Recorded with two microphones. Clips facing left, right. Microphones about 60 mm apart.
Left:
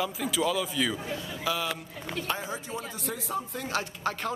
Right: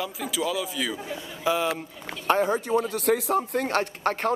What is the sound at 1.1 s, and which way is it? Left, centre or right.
Speech, right.